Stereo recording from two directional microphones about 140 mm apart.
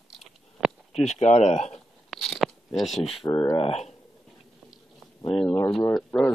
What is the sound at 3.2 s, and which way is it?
Speech, 20° left (ahead or behind).